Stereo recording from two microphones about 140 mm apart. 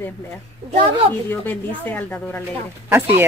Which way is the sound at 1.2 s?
15° left (ahead or behind).